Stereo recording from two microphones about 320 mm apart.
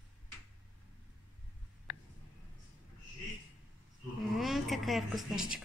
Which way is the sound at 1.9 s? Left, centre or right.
Left.